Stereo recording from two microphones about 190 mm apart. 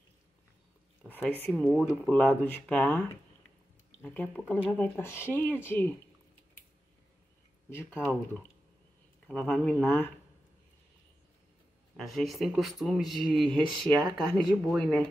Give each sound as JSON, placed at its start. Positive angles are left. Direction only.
{"t": 1.1, "sound": "speech", "side_deg": 10}
{"t": 4.0, "sound": "speech", "side_deg": 10}
{"t": 7.7, "sound": "speech", "side_deg": 10}
{"t": 9.3, "sound": "speech", "side_deg": 5}
{"t": 12.0, "sound": "speech", "side_deg": 0}
{"t": 13.8, "sound": "speech", "side_deg": -20}
{"t": 14.1, "sound": "speech", "side_deg": 5}